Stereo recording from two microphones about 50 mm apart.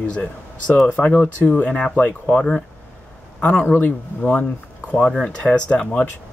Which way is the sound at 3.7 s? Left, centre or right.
Left.